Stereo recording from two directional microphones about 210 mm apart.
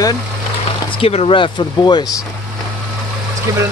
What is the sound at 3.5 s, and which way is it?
Speech, 15° right (ahead or behind).